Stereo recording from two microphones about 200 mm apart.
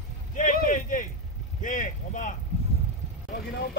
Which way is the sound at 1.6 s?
40° left (ahead or behind).